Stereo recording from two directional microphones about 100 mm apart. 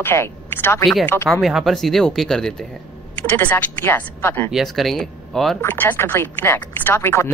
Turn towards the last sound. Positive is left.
turn(degrees=25)  # may be behind; listen again after turning